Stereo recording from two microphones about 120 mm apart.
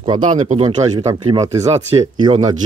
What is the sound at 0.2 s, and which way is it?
Speech, 85° right.